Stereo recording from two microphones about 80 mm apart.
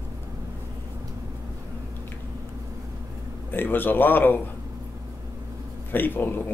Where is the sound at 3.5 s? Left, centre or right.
Left.